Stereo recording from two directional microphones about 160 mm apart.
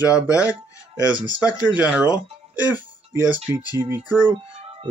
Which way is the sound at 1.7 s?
5° right (ahead or behind).